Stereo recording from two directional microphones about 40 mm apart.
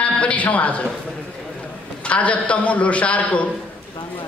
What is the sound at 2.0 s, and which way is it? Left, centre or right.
A man's voice, left.